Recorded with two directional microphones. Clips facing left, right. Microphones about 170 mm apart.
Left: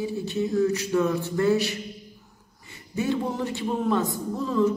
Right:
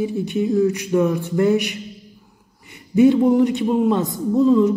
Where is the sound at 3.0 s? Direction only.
15° right (ahead or behind).